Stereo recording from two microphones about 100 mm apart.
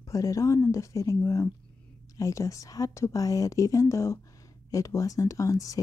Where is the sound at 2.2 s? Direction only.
30° left (ahead or behind).